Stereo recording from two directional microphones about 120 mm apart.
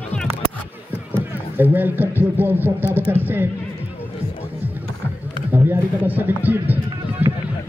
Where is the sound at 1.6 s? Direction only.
15° right (ahead or behind).